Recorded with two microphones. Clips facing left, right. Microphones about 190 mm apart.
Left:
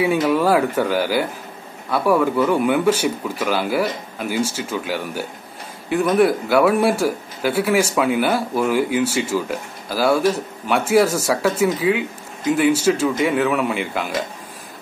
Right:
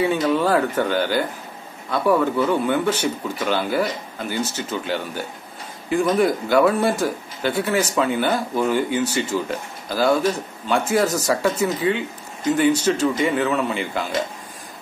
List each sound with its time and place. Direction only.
0.0 s speech: 10° left (ahead or behind)